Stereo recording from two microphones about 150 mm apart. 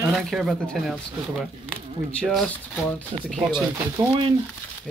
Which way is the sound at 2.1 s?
5° left (ahead or behind).